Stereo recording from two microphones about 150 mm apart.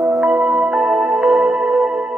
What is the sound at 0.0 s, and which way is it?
Music, 15° right (ahead or behind).